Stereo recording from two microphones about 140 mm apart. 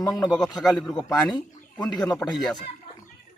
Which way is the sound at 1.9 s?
25° left (ahead or behind).